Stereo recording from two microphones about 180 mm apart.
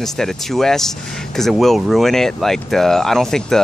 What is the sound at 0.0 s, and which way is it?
Speech, centre (ahead or behind).